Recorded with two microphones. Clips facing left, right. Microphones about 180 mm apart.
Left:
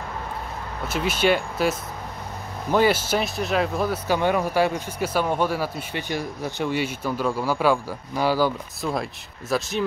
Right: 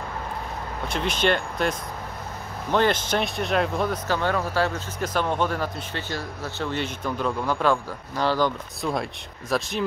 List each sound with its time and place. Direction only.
0.8 s speech: 5° left (ahead or behind)
4.1 s speech: 15° left (ahead or behind)